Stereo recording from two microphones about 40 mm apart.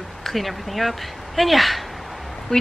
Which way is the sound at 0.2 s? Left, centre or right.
Centre.